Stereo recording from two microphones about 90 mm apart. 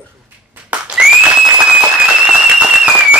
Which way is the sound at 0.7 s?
10° right (ahead or behind).